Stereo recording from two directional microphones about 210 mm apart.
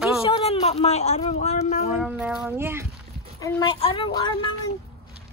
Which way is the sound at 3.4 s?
15° left (ahead or behind).